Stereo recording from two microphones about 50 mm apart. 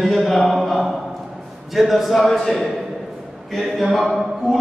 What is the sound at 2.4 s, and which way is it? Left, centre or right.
Speech, centre.